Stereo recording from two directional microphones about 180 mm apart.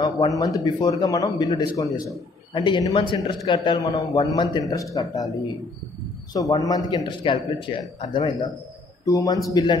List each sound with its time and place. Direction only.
0.0 s a man's voice: 20° left (ahead or behind)
6.5 s a man's voice: 20° left (ahead or behind)
9.0 s a man's voice: 20° left (ahead or behind)